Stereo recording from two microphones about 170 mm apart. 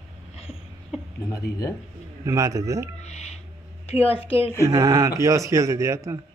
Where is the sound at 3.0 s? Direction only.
40° left (ahead or behind).